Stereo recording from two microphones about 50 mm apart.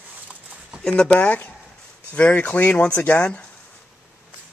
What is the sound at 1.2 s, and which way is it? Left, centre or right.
Speech, left.